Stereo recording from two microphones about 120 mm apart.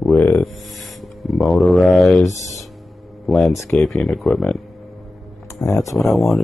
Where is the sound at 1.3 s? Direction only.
Centre (ahead or behind).